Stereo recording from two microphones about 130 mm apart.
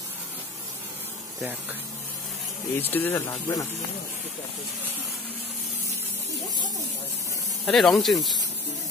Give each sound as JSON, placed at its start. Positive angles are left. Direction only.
{"t": 2.8, "sound": "speech", "side_deg": 15}
{"t": 7.6, "sound": "speech", "side_deg": 0}